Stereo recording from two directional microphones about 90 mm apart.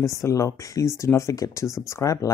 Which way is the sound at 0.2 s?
35° left (ahead or behind).